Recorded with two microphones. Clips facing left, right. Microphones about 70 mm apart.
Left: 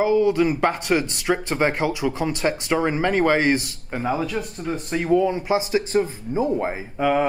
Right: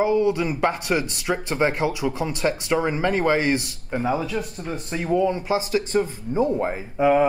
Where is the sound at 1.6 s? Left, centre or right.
Left.